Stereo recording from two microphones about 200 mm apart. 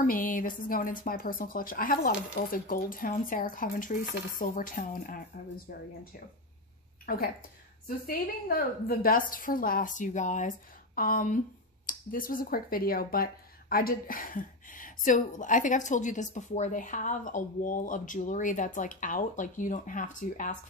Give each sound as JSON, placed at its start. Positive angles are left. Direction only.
{"t": 0.0, "sound": "speech", "side_deg": 45}
{"t": 7.1, "sound": "speech", "side_deg": 50}